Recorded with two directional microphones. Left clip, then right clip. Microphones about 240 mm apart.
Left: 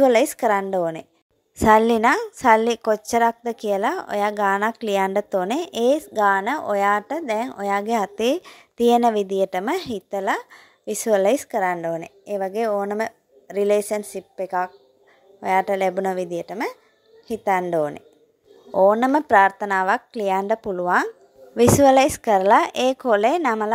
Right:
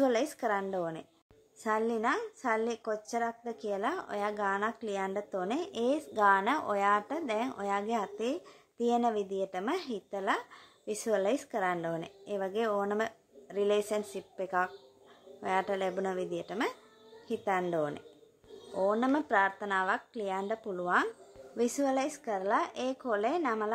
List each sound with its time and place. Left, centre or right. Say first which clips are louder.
0.0 s a woman's voice: left 13 dB; left